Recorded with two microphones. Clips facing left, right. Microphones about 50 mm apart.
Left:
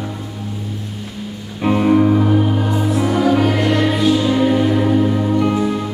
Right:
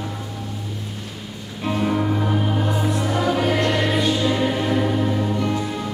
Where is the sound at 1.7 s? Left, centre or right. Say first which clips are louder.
Left 8 dB; left.